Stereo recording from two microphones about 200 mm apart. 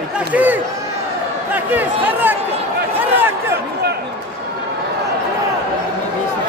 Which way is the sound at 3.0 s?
10° right (ahead or behind).